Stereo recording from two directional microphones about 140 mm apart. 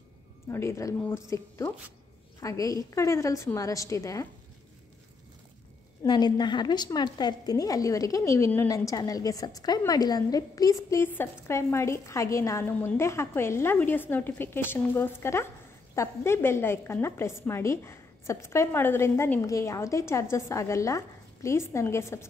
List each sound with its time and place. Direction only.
0.5 s a woman's voice: 20° left (ahead or behind)
6.0 s a woman's voice: 30° left (ahead or behind)